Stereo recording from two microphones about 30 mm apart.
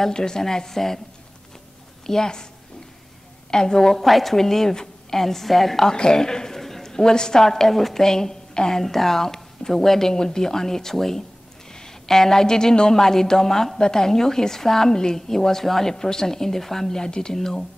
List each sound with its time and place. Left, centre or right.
0.1 s a woman's voice: left
2.0 s a woman's voice: left
3.4 s a woman's voice: left
4.0 s a woman's voice: centre
5.9 s a woman's voice: left
9.6 s a sound: centre
9.8 s a woman's voice: centre